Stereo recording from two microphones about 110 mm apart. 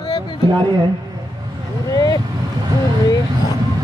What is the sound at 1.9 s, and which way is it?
Vehicle, 35° left (ahead or behind).